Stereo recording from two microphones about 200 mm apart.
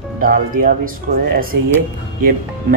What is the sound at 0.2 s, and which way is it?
Speech, 45° right (ahead or behind).